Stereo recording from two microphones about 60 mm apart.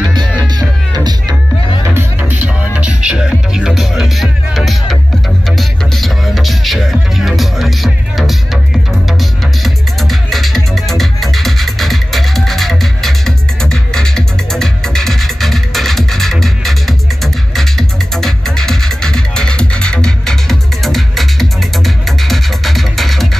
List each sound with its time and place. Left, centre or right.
0.4 s music: right
2.2 s music: right; by 23.2 s centre